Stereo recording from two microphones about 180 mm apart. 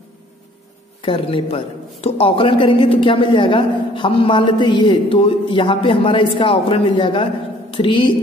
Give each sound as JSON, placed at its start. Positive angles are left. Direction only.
{"t": 1.0, "sound": "a man's voice", "side_deg": 30}